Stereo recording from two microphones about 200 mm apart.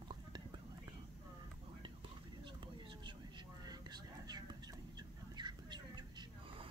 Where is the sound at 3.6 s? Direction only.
20° right (ahead or behind).